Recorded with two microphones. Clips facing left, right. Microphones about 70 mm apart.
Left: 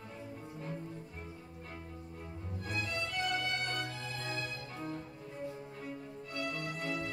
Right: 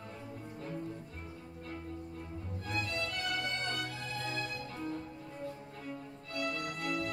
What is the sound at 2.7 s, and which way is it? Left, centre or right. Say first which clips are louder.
Music: right 1 dB; right.